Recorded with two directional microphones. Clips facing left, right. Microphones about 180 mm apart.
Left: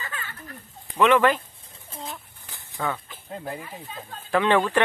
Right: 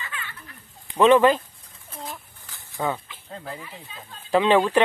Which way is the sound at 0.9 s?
25° right (ahead or behind).